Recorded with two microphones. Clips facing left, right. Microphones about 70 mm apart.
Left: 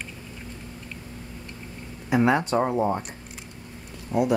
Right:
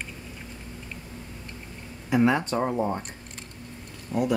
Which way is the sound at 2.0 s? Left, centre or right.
Centre.